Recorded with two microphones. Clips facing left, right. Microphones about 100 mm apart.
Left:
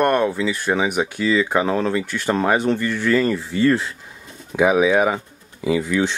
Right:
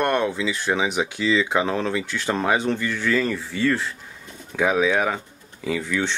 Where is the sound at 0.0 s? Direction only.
5° left (ahead or behind).